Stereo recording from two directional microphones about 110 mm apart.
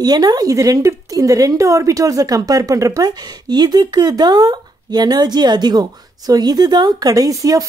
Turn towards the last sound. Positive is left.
turn(degrees=-30)  # may be behind; listen again after turning